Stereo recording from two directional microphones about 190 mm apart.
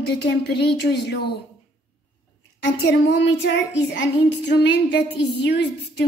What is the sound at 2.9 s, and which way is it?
Child singing, 65° left (ahead or behind).